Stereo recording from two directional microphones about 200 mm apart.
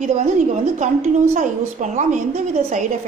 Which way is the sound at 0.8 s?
40° right (ahead or behind).